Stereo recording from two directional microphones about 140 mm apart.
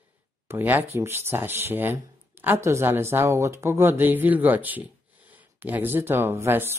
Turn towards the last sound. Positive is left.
turn(degrees=-15)  # may be behind; listen again after turning